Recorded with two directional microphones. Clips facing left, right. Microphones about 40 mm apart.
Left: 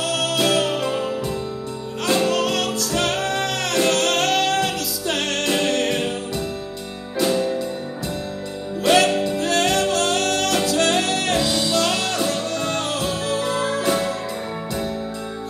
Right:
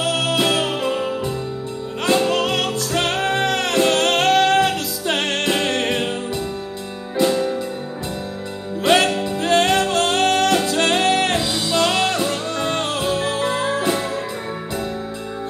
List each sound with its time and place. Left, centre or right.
0.0 s music: right
2.0 s music: right
8.8 s music: right